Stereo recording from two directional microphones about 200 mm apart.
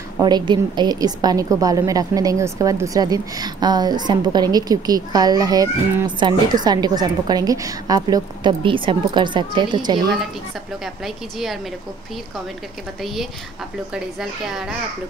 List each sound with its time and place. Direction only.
0.2 s a woman's voice: 20° right (ahead or behind)
11.1 s a woman's voice: centre (ahead or behind)
13.0 s a woman's voice: centre (ahead or behind)